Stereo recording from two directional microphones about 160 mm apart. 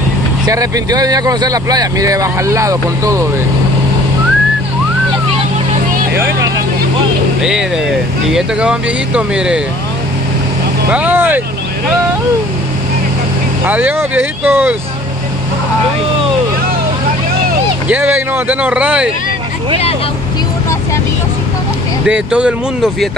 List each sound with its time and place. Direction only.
0.5 s speech: 20° right (ahead or behind)
8.3 s speech: 5° right (ahead or behind)
10.9 s speech: 10° right (ahead or behind)
13.7 s speech: 10° right (ahead or behind)
17.8 s speech: 10° right (ahead or behind)
22.0 s speech: 5° right (ahead or behind)